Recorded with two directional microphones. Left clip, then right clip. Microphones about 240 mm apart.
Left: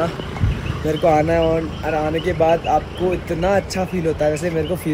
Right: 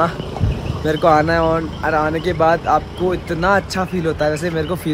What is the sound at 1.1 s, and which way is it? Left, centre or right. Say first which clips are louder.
Speech: right 2 dB; centre.